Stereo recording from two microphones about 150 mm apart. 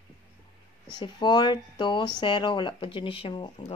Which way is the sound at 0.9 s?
30° left (ahead or behind).